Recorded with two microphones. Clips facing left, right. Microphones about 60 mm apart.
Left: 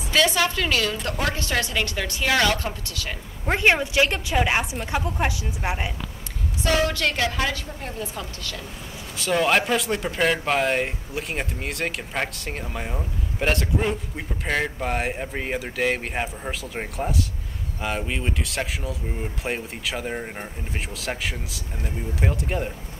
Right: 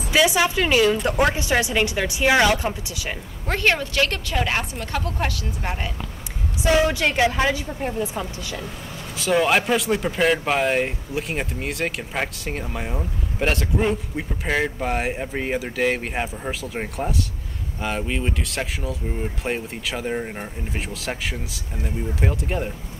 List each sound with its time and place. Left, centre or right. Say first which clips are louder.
0.1 s a woman's voice: right 2 dB; centre
3.4 s a woman's voice: left 1 dB; centre
6.6 s a woman's voice: right 3 dB; centre
9.1 s speech: right 2 dB; centre